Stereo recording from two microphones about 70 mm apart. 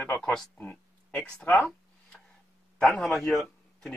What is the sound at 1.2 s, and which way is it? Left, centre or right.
Speech, centre.